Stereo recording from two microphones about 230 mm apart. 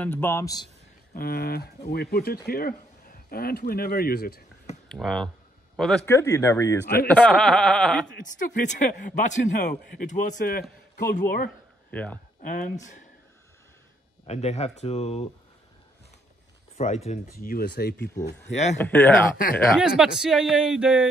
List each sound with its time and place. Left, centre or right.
0.0 s speech: centre
1.1 s speech: left
4.8 s a man's voice: centre
8.2 s speech: left
9.6 s speech: left
10.0 s speech: left
11.9 s speech: centre
12.4 s speech: left
14.2 s speech: left
16.7 s speech: left
17.5 s speech: left
18.5 s speech: left
18.8 s a man's voice: centre